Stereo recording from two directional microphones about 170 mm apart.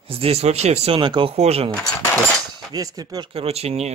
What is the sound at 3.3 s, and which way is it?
Speech, 35° right (ahead or behind).